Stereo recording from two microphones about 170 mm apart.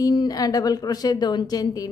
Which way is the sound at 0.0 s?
20° left (ahead or behind).